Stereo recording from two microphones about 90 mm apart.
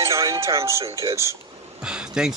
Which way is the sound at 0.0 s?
35° right (ahead or behind).